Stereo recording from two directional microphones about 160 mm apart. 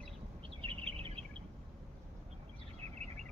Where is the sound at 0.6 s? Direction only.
35° right (ahead or behind).